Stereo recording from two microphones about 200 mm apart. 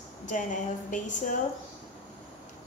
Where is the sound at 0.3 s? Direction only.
40° left (ahead or behind).